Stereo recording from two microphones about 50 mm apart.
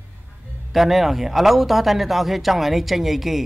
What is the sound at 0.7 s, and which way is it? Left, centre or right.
Speech, centre.